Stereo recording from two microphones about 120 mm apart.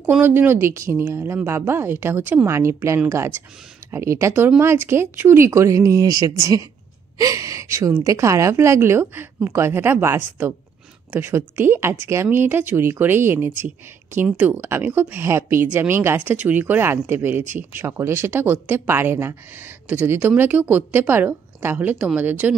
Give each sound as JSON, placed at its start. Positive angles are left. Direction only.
{"t": 0.1, "sound": "a woman's voice", "side_deg": -15}